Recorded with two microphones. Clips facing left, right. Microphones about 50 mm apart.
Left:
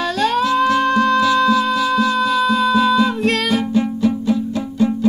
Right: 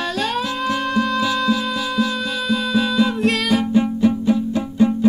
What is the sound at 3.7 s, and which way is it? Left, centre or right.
Music, centre.